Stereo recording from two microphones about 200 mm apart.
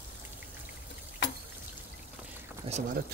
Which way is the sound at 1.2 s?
65° left (ahead or behind).